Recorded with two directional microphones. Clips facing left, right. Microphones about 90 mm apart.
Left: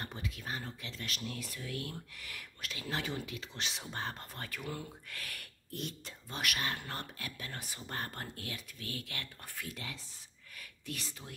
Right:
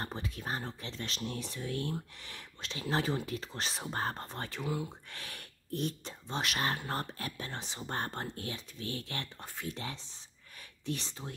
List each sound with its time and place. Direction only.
0.0 s speech: 35° right (ahead or behind)
4.6 s speech: 15° right (ahead or behind)
5.1 s speech: 25° right (ahead or behind)